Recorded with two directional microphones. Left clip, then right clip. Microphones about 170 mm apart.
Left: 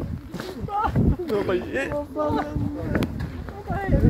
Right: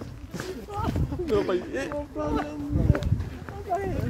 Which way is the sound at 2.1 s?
15° left (ahead or behind).